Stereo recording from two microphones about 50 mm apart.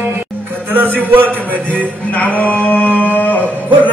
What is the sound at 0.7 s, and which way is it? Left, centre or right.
Speech, right.